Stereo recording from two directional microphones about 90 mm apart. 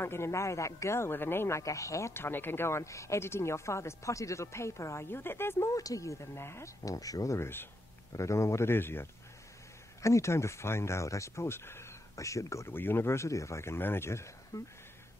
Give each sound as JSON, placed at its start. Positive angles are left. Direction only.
{"t": 0.0, "sound": "speech", "side_deg": 30}
{"t": 1.6, "sound": "speech", "side_deg": 35}
{"t": 5.7, "sound": "speech", "side_deg": 40}
{"t": 12.7, "sound": "speech", "side_deg": 25}